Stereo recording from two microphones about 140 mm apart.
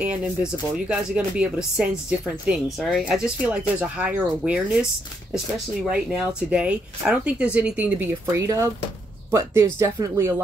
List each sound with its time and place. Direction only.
0.0 s speech: 10° right (ahead or behind)
5.9 s speech: 5° right (ahead or behind); by 10.3 s 20° right (ahead or behind)